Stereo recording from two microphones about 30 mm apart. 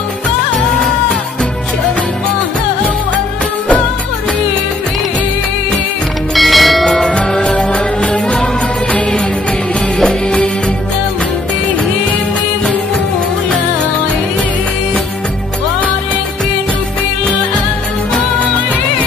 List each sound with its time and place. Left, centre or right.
6.3 s music: centre
7.5 s music: left